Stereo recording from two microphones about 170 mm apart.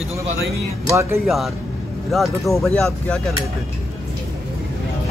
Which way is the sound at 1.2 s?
Centre (ahead or behind).